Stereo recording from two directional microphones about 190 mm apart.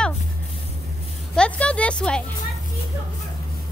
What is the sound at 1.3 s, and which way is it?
Speech, 5° left (ahead or behind).